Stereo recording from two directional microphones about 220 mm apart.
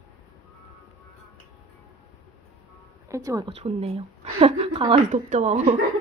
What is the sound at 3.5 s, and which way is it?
A woman's voice, 25° right (ahead or behind).